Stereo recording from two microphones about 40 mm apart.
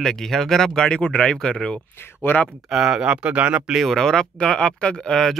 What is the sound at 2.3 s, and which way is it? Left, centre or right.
Speech, left.